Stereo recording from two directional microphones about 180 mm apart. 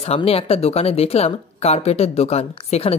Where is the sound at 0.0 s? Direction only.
35° left (ahead or behind).